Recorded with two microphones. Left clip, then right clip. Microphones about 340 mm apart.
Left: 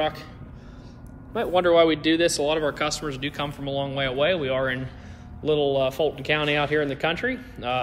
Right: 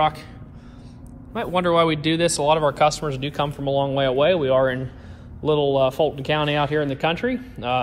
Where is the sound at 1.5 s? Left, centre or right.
Centre.